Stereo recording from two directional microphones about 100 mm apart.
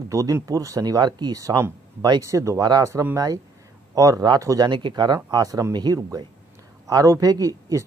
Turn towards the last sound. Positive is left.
turn(degrees=-35)  # may be behind; listen again after turning